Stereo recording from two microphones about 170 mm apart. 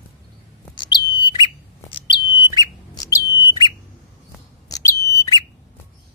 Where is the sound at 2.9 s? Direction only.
20° left (ahead or behind).